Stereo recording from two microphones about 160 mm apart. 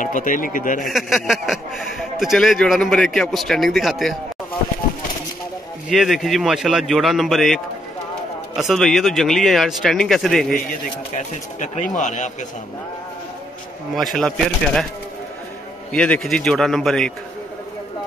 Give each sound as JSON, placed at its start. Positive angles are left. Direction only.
{"t": 0.0, "sound": "speech", "side_deg": 55}
{"t": 0.8, "sound": "speech", "side_deg": 0}
{"t": 5.9, "sound": "speech", "side_deg": 0}
{"t": 11.1, "sound": "speech", "side_deg": 50}
{"t": 13.9, "sound": "speech", "side_deg": 5}
{"t": 15.9, "sound": "speech", "side_deg": 5}